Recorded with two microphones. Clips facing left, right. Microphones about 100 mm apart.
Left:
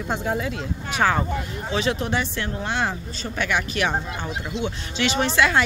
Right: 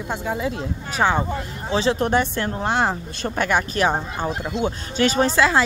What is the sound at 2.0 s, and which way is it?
Speech, 45° right (ahead or behind).